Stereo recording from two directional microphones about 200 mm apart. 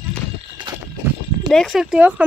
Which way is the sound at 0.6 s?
20° right (ahead or behind).